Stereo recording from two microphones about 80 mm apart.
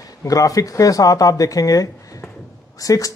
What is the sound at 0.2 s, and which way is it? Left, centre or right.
Speech, left.